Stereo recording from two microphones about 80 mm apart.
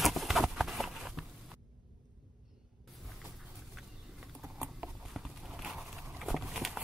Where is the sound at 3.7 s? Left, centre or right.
Centre.